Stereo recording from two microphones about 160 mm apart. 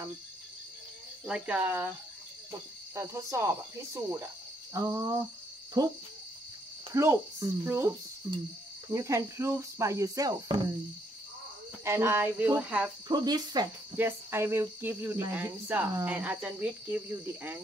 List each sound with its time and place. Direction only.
1.2 s speech: 5° right (ahead or behind)
2.9 s speech: 20° right (ahead or behind)
8.8 s speech: 20° right (ahead or behind)
11.8 s speech: 15° right (ahead or behind)
13.1 s speech: 25° right (ahead or behind)
13.9 s speech: 15° right (ahead or behind)